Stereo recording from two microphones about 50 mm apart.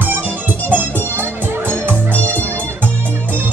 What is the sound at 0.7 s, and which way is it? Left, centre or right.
Music, right.